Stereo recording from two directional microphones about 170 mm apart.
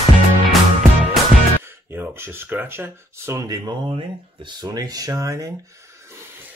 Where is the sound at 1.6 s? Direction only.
15° right (ahead or behind).